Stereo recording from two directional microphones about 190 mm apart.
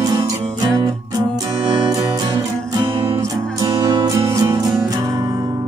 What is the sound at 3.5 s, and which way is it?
Music, 20° right (ahead or behind).